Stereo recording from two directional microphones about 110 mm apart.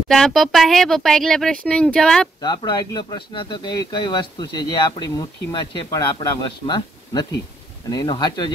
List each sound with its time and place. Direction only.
0.1 s speech: centre (ahead or behind)
2.4 s speech: 40° left (ahead or behind)